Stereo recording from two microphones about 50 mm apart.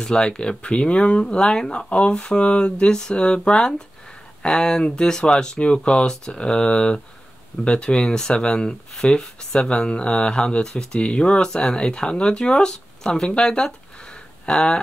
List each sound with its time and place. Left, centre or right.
0.0 s speech: centre
1.7 s speech: left